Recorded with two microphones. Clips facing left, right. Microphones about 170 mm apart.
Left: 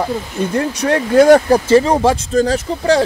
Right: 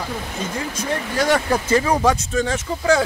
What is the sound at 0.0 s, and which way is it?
Speech, 60° left (ahead or behind).